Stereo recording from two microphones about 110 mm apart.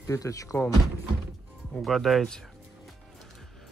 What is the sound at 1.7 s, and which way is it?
Music, centre (ahead or behind).